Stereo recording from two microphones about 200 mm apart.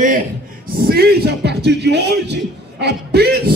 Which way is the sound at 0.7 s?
50° right (ahead or behind).